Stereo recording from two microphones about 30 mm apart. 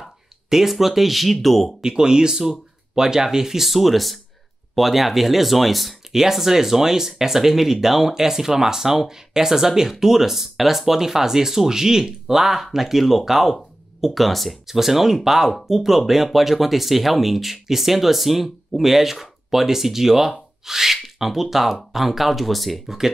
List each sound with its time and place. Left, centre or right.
0.5 s speech: centre
1.8 s speech: right; by 5.9 s centre
6.1 s speech: centre
13.6 s speech: centre
22.8 s speech: centre